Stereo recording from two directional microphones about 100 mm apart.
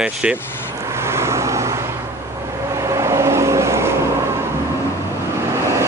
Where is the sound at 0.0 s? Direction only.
10° right (ahead or behind).